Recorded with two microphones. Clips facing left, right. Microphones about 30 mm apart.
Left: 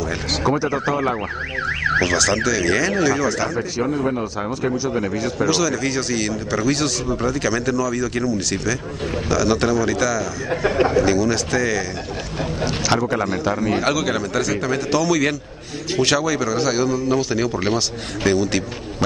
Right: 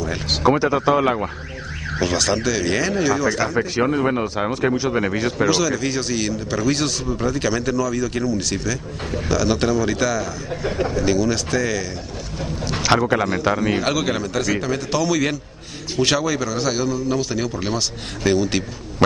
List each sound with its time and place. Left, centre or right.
0.0 s speech: centre
0.4 s a man's voice: right
1.7 s car alarm: left
2.0 s a man's voice: centre
3.5 s a man's voice: right
5.5 s a man's voice: centre
10.5 s speech: left
11.1 s a man's voice: centre
12.8 s a man's voice: centre
13.6 s a man's voice: centre